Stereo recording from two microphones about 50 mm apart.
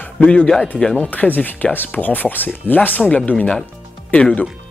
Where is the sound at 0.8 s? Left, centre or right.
Centre.